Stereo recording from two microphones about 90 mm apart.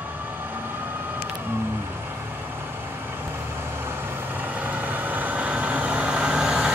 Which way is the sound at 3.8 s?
20° right (ahead or behind).